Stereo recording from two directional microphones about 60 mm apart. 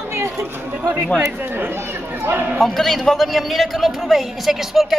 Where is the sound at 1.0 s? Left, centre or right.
Centre.